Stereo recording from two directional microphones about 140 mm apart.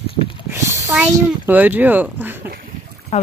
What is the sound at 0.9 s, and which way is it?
Speech, 5° right (ahead or behind).